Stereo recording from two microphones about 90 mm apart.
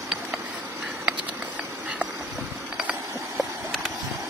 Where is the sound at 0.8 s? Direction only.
15° right (ahead or behind).